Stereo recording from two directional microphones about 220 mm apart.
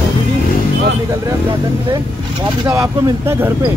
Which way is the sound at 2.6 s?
15° right (ahead or behind).